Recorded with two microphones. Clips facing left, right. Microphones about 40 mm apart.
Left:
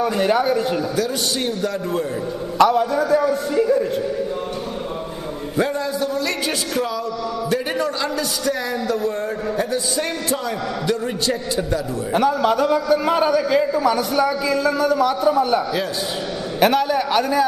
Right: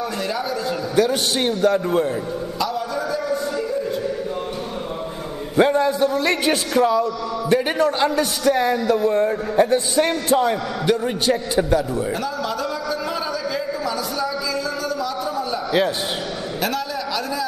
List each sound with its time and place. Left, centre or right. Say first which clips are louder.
0.0 s a man's voice: left 7 dB; left
0.9 s a man's voice: right 3 dB; centre
2.6 s a man's voice: left 10 dB; left
3.3 s a man's voice: left 5 dB; left
5.6 s a man's voice: right 5 dB; right
12.1 s a man's voice: left 7 dB; left
16.5 s a sound: left 9 dB; left